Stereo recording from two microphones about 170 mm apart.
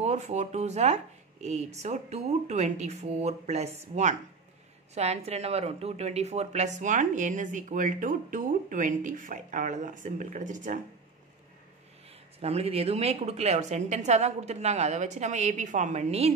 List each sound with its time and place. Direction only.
0.0 s speech: 40° right (ahead or behind)
12.4 s speech: 35° right (ahead or behind)